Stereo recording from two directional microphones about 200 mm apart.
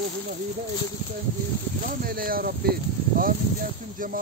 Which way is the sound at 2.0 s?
45° right (ahead or behind).